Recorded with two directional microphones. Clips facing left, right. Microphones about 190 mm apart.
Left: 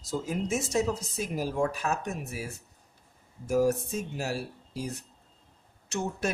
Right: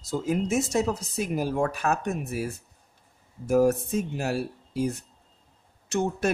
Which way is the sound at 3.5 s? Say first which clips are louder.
Right 4 dB; 60° right (ahead or behind).